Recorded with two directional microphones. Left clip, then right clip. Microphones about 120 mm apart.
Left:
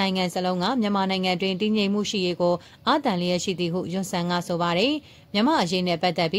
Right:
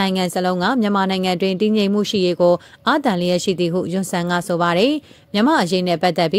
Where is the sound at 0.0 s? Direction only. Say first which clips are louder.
Right 5 dB; 45° right (ahead or behind).